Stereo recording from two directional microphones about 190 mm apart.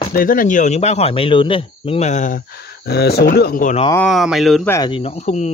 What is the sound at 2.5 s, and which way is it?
Speech, 60° left (ahead or behind).